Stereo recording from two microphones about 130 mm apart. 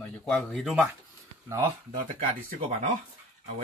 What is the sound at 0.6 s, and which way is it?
Speech, centre (ahead or behind).